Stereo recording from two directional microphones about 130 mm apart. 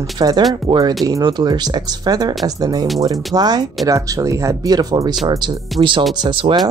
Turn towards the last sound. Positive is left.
turn(degrees=-40)  # may be behind; listen again after turning